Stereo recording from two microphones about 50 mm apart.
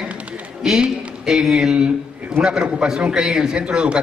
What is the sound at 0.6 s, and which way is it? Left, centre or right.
A man's voice, centre.